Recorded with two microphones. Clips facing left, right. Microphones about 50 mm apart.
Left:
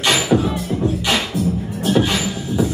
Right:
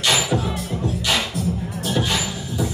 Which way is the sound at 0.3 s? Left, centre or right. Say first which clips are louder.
Left 6 dB; centre.